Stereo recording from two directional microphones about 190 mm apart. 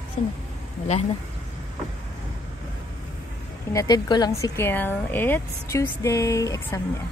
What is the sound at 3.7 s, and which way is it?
Speech, 20° left (ahead or behind).